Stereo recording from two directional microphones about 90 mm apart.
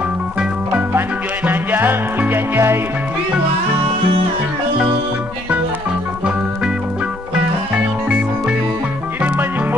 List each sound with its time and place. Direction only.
0.4 s music: 15° right (ahead or behind)
7.7 s music: 15° right (ahead or behind)